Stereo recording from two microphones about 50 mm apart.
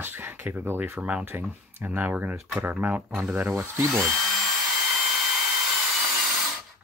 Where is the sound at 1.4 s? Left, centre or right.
Right.